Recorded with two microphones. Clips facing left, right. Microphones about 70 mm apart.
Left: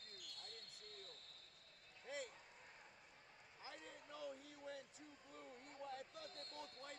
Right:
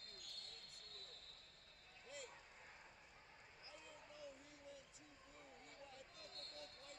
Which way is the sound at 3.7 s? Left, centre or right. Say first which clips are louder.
Left 2 dB; left.